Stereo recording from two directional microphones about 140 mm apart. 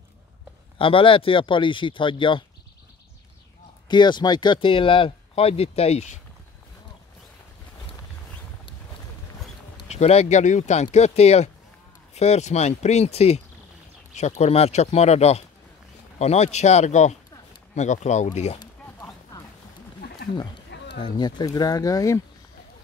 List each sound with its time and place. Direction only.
0.7 s speech: 40° left (ahead or behind)
3.9 s speech: 30° left (ahead or behind); by 6.1 s 50° left (ahead or behind)
9.8 s speech: 50° left (ahead or behind)
21.0 s speech: 30° left (ahead or behind)